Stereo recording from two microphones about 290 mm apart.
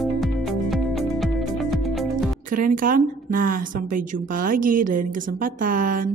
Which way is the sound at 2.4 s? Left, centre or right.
Right.